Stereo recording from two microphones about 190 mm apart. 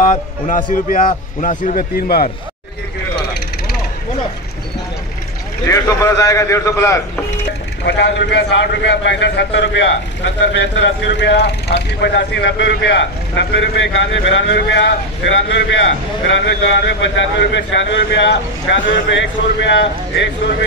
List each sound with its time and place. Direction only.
0.0 s a man's voice: 45° left (ahead or behind)
5.7 s a man's voice: 15° left (ahead or behind)
7.8 s a man's voice: 65° left (ahead or behind)